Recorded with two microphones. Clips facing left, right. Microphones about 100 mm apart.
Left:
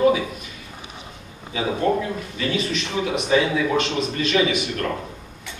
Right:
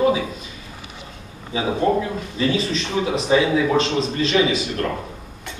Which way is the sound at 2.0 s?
30° right (ahead or behind).